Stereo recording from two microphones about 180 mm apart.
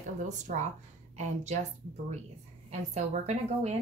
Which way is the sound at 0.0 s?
45° right (ahead or behind).